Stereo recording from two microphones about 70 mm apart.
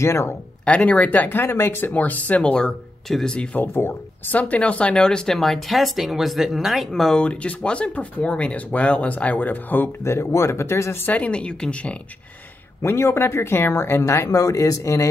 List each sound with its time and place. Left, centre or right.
0.0 s speech: left
0.7 s speech: centre; by 1.9 s left
1.9 s speech: left
3.1 s speech: centre
3.5 s speech: left
10.0 s speech: left
11.1 s speech: centre
12.8 s speech: left